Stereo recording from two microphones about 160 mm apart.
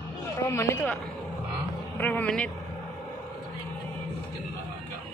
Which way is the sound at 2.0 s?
10° left (ahead or behind).